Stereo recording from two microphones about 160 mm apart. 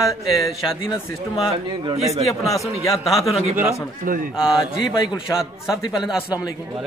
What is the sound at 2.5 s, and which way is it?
Speech, 20° left (ahead or behind).